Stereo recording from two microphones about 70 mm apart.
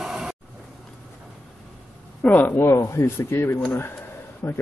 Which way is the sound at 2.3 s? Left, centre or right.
Left.